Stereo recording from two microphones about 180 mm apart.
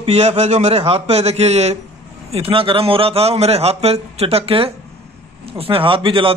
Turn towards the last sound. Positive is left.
turn(degrees=-30)  # may be behind; listen again after turning